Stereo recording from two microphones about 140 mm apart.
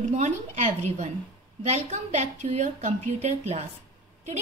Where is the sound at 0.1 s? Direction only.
60° right (ahead or behind).